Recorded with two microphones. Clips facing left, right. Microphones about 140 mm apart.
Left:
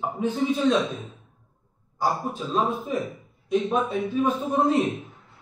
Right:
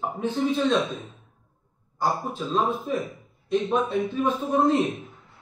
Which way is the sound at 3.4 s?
5° left (ahead or behind).